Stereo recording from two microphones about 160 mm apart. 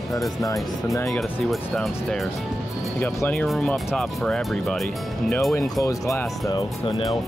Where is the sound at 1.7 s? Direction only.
Centre (ahead or behind).